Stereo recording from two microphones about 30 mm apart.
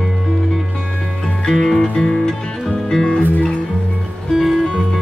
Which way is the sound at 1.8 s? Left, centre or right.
Centre.